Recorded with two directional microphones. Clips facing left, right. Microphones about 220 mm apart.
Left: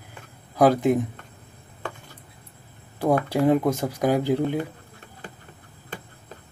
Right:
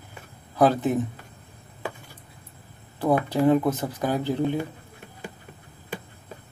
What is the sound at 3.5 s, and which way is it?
Speech, 10° left (ahead or behind).